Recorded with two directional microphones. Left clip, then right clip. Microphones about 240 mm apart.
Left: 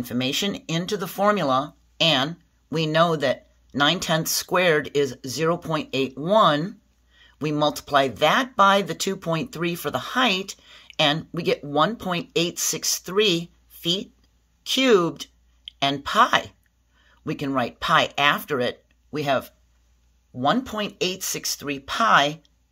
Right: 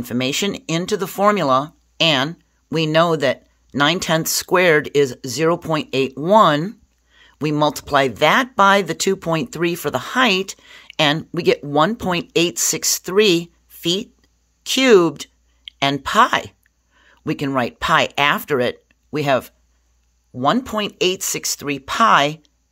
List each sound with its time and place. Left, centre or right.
0.0 s speech: right